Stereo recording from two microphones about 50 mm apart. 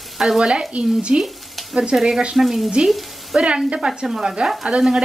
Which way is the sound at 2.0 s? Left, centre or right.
Centre.